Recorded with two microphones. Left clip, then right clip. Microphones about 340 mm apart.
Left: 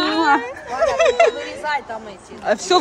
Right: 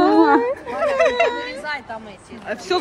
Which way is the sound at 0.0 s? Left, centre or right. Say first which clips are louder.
Right 3 dB; centre.